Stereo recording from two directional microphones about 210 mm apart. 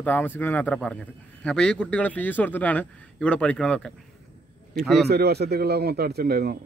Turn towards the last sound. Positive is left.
turn(degrees=-45)  # may be behind; listen again after turning